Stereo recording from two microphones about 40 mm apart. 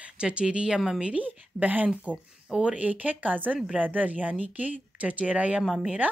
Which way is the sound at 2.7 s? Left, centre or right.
Right.